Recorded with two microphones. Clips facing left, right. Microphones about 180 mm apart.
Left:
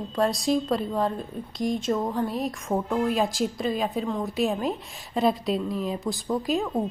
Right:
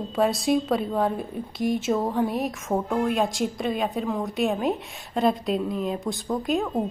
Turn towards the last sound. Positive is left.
turn(degrees=0)  # may be behind; listen again after turning